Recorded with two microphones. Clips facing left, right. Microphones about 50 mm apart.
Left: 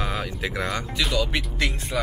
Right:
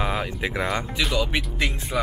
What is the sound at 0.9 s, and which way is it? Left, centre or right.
Speech, centre.